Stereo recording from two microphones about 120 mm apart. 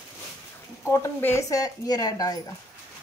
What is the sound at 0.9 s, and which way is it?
Speech, 20° left (ahead or behind).